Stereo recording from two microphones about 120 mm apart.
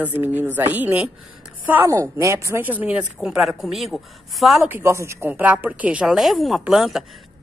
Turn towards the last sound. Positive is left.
turn(degrees=-5)  # may be behind; listen again after turning